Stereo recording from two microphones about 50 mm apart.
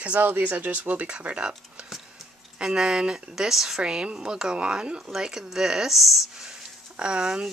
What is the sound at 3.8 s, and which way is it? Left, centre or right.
Speech, centre.